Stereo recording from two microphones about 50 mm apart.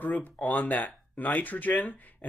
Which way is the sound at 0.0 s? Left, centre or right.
Left.